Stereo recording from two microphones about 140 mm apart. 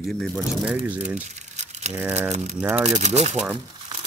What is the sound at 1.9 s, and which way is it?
Speech, 15° right (ahead or behind).